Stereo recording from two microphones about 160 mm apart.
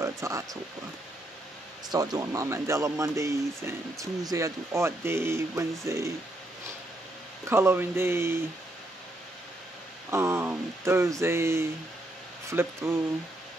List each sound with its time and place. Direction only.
0.0 s speech: 20° right (ahead or behind)
1.9 s speech: 25° right (ahead or behind)
7.4 s speech: 15° right (ahead or behind)
10.1 s speech: 15° right (ahead or behind)